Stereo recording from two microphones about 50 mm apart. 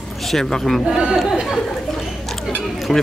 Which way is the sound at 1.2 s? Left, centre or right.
Centre.